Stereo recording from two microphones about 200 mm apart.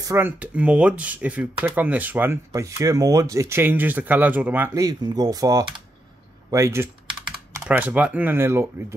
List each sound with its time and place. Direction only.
0.0 s speech: 10° right (ahead or behind)